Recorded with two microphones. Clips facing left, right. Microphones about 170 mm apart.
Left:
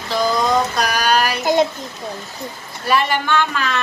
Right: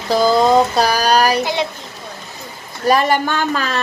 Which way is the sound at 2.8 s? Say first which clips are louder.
Right 4 dB; 40° right (ahead or behind).